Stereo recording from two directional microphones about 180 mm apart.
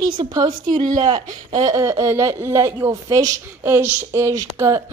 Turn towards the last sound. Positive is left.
turn(degrees=-15)  # may be behind; listen again after turning